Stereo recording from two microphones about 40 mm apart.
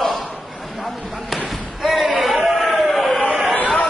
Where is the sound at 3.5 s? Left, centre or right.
Left.